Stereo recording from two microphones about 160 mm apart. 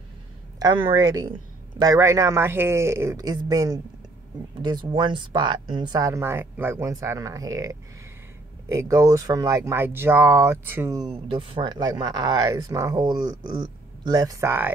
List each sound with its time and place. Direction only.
0.6 s speech: 30° right (ahead or behind)